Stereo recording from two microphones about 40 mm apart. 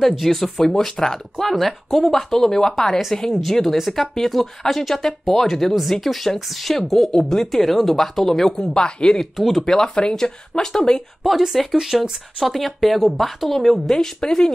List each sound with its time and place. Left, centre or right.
0.2 s speech: centre
1.4 s speech: centre
9.4 s speech: centre
9.7 s speech: centre
11.2 s speech: centre
13.9 s speech: centre